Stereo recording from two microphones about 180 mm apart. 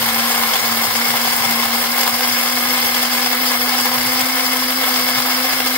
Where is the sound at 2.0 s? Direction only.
10° left (ahead or behind).